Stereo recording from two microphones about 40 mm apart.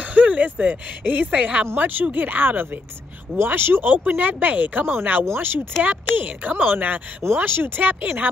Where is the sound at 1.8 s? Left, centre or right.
Right.